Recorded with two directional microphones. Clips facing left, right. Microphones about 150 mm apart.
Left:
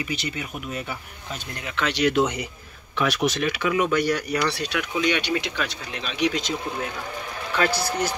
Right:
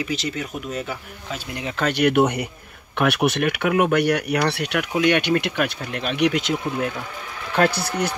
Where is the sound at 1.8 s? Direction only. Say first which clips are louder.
Right 3 dB; 55° right (ahead or behind).